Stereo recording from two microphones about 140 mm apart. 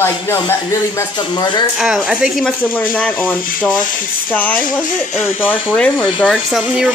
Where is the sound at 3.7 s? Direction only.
70° left (ahead or behind).